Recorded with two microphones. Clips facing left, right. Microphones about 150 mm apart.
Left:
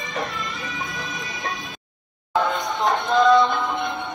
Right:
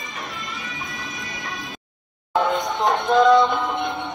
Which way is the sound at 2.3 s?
20° right (ahead or behind).